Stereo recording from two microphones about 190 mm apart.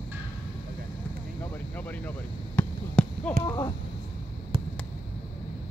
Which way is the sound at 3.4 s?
25° left (ahead or behind).